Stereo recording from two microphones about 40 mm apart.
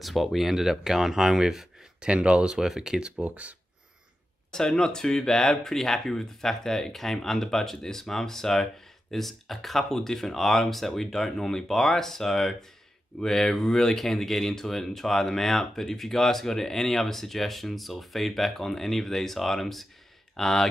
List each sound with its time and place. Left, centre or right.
0.0 s speech: centre
2.0 s speech: right
2.5 s speech: centre
3.0 s speech: right
3.3 s speech: right
4.5 s speech: centre